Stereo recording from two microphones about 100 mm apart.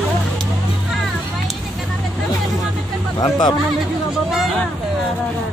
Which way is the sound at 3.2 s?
45° left (ahead or behind).